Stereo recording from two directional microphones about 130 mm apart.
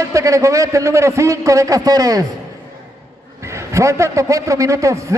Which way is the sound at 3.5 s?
25° right (ahead or behind).